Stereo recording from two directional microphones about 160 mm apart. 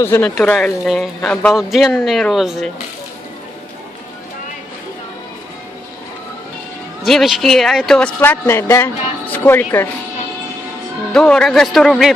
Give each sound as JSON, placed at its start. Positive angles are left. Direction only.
{"t": 0.0, "sound": "speech", "side_deg": 15}
{"t": 0.3, "sound": "speech", "side_deg": 5}
{"t": 7.1, "sound": "speech", "side_deg": 0}
{"t": 11.1, "sound": "speech", "side_deg": 5}